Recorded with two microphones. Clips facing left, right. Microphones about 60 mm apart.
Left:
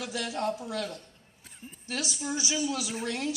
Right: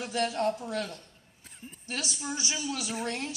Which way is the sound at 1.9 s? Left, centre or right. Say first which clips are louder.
Left 2 dB; right.